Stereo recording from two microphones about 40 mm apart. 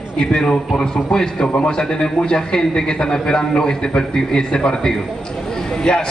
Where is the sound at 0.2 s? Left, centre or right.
Left.